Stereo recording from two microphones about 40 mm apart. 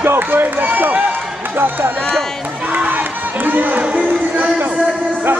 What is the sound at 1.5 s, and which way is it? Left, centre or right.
Speech, right.